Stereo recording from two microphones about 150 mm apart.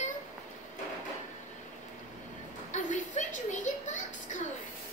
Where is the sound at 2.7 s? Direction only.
55° left (ahead or behind).